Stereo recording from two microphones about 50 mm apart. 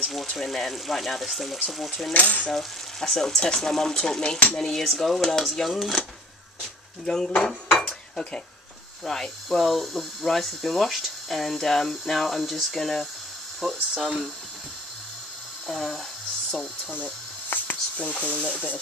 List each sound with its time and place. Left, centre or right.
0.0 s speech: centre
2.1 s cutlery: left
2.4 s frying: centre
4.9 s speech: centre
7.1 s frying: centre
7.8 s cutlery: left
9.0 s speech: centre
15.6 s speech: centre
16.9 s a sound: left
17.9 s speech: left
18.4 s frying: centre